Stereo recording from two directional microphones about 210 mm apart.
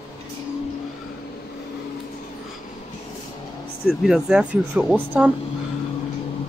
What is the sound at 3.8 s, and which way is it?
Speech, centre (ahead or behind).